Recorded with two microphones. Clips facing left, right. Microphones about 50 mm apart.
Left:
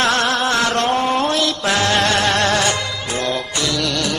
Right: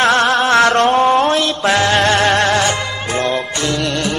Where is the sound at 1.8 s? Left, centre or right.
Centre.